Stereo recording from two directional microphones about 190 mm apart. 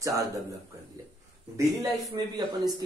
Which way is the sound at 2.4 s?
20° right (ahead or behind).